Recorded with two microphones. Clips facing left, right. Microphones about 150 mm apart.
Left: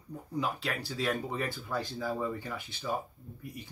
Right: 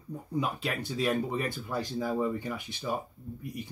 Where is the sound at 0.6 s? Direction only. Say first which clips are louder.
Right 3 dB; 20° right (ahead or behind).